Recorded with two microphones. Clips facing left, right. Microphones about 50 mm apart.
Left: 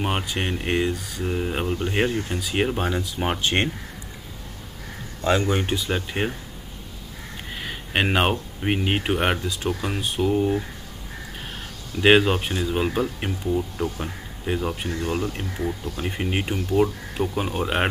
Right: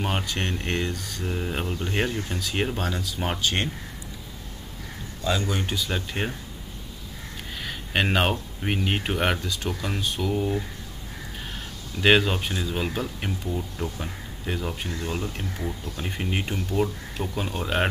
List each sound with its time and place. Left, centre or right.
0.0 s speech: centre
5.2 s speech: left
5.9 s speech: centre
7.5 s speech: centre
12.0 s speech: centre